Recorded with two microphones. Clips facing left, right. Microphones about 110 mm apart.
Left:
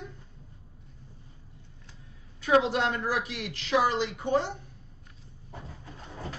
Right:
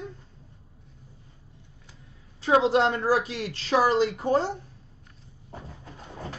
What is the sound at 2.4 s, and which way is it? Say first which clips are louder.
A woman's voice: right 3 dB; 30° right (ahead or behind).